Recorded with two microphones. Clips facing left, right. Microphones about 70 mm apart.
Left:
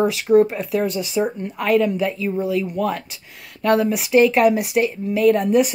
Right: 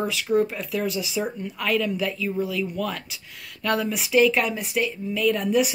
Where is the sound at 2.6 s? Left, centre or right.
Left.